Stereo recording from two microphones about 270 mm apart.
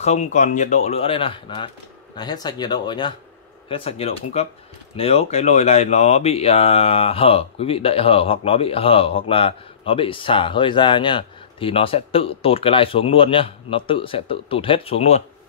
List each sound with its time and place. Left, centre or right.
0.0 s speech: left